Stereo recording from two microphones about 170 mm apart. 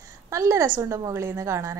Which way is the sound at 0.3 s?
20° right (ahead or behind).